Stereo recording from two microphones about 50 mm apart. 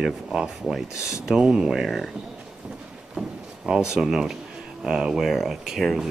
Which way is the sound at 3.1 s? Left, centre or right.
Centre.